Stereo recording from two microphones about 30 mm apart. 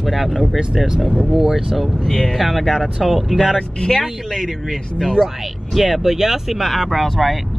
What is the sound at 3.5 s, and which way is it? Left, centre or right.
Speech, left.